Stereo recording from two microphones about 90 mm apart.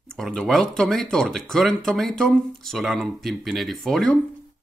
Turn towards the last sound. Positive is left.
turn(degrees=5)  # may be behind; listen again after turning